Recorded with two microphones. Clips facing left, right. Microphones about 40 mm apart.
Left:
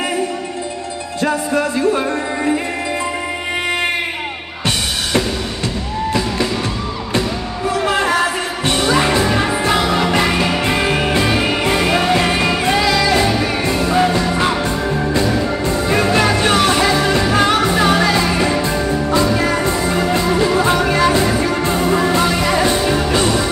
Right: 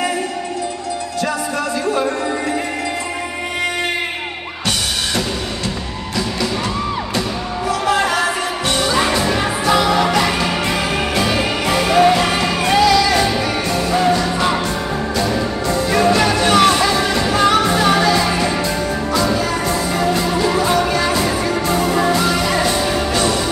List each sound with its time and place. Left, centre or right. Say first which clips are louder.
7.8 s a sound: left 1 dB; left
8.6 s music: left 2 dB; centre
11.0 s music: left 2 dB; left
15.6 s music: right 3 dB; left
22.8 s music: left 2 dB; centre
23.1 s music: left 1 dB; left